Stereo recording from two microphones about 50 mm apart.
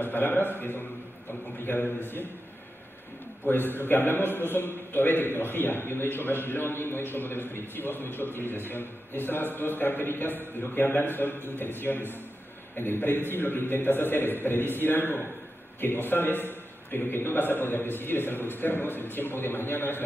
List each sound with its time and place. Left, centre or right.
0.0 s a man's voice: left
3.4 s a man's voice: left